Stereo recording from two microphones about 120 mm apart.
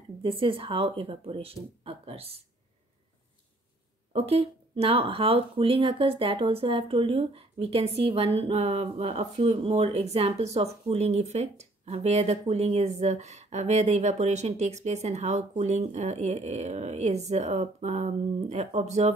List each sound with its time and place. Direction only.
0.2 s a woman's voice: 50° right (ahead or behind)
4.1 s speech: 55° right (ahead or behind)